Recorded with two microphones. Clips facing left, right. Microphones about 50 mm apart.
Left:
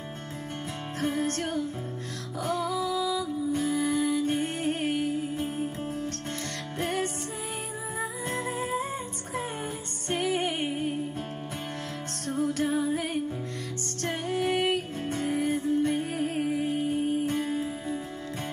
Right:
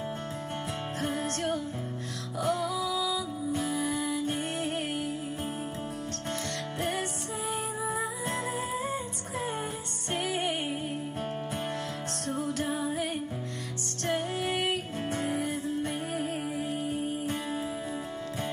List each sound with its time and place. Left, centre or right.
2.5 s music: left
6.8 s music: left
7.8 s music: right
8.5 s music: left
12.4 s music: left
14.4 s music: left